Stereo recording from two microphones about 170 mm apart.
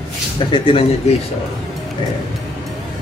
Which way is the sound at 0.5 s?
30° left (ahead or behind).